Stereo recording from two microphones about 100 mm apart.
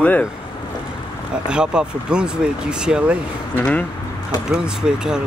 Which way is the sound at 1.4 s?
10° right (ahead or behind).